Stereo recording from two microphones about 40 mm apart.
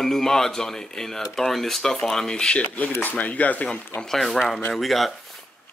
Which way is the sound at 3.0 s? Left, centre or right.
Left.